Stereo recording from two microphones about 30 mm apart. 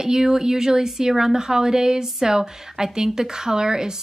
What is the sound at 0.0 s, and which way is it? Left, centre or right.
Speech, right.